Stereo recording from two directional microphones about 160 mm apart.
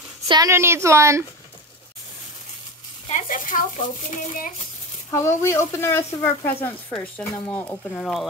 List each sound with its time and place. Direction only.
0.3 s a woman's voice: 20° right (ahead or behind)
3.1 s speech: 55° left (ahead or behind)
5.1 s speech: 15° left (ahead or behind)
8.0 s speech: centre (ahead or behind)